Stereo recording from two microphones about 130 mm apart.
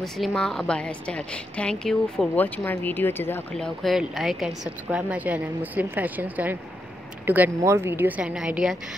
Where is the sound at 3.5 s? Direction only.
5° left (ahead or behind).